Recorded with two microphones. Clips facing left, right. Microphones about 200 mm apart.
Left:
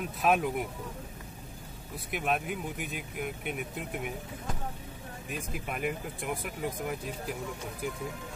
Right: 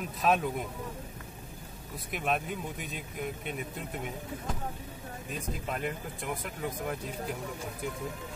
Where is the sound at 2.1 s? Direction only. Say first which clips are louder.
Left 1 dB; centre (ahead or behind).